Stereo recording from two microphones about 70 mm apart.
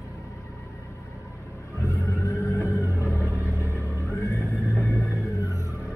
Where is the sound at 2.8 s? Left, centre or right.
Left.